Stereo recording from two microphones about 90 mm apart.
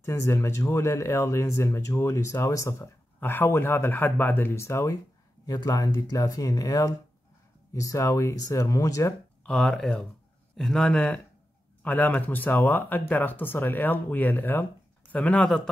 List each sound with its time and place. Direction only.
0.0 s speech: 30° left (ahead or behind)
3.2 s speech: 25° left (ahead or behind)
5.5 s speech: 45° left (ahead or behind)
9.5 s speech: 5° left (ahead or behind)